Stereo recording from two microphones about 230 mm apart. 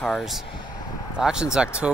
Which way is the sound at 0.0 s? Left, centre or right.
Centre.